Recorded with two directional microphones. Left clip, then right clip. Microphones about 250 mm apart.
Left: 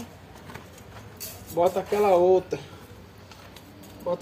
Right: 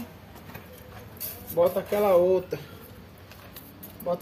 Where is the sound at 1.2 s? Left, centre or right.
Centre.